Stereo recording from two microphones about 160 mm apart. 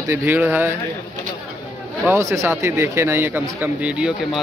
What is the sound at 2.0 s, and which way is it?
Speech, 20° right (ahead or behind).